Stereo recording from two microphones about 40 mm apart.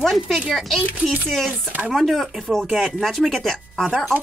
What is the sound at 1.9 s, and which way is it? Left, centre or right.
Speech, centre.